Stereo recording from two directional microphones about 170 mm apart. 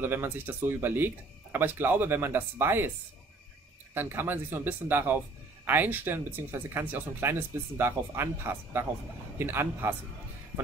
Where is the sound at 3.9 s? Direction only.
10° right (ahead or behind).